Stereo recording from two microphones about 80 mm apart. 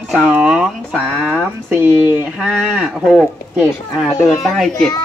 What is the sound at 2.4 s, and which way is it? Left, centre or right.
Speech, centre.